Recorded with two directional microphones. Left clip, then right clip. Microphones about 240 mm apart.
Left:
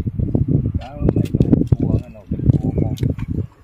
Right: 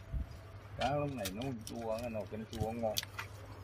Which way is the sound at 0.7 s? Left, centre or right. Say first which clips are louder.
Left 11 dB; centre.